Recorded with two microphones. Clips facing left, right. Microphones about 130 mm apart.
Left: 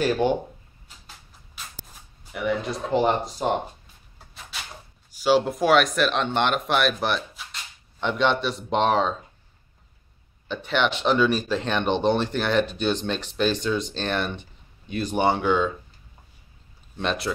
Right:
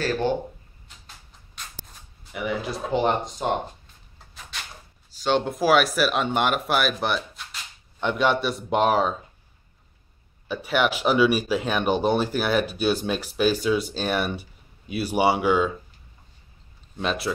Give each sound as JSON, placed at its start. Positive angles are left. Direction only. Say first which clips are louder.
{"t": 0.0, "sound": "speech", "louder": "left 2 dB", "side_deg": 15}
{"t": 0.8, "sound": "a sound", "louder": "left 1 dB", "side_deg": 5}
{"t": 2.3, "sound": "speech", "louder": "left 2 dB", "side_deg": 0}
{"t": 4.3, "sound": "a sound", "louder": "even", "side_deg": 0}
{"t": 5.1, "sound": "speech", "louder": "left 3 dB", "side_deg": 5}
{"t": 10.5, "sound": "speech", "louder": "right 1 dB", "side_deg": -10}
{"t": 16.9, "sound": "speech", "louder": "even", "side_deg": 0}